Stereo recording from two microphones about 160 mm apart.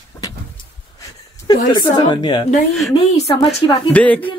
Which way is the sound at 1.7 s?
25° left (ahead or behind).